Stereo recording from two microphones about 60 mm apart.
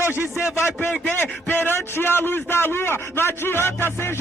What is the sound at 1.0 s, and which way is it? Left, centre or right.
A man's voice, left.